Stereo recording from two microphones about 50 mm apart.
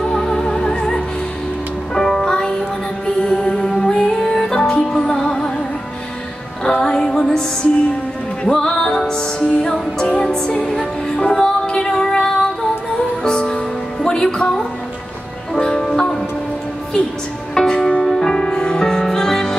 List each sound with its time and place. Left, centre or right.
0.0 s music: centre
6.7 s music: centre
8.5 s music: centre
15.6 s music: centre
17.6 s music: centre